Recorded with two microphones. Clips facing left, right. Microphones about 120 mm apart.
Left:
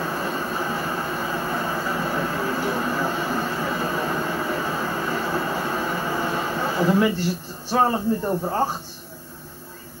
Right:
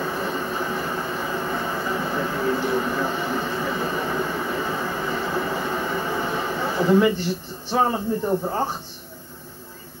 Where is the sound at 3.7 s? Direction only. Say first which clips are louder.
Even; 10° left (ahead or behind).